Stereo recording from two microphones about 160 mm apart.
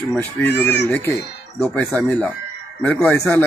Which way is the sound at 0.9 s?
15° left (ahead or behind).